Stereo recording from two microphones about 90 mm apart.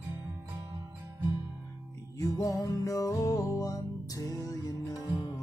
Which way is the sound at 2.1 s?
35° left (ahead or behind).